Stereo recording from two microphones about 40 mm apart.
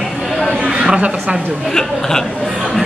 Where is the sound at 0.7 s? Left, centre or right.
Right.